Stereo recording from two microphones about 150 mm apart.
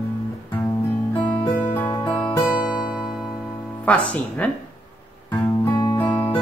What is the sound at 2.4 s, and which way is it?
Music, 5° right (ahead or behind).